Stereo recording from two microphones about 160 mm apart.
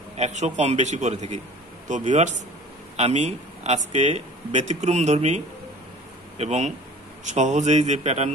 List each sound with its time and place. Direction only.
0.2 s speech: 45° right (ahead or behind)